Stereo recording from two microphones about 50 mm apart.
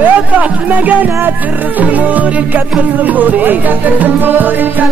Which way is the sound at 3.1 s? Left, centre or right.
Right.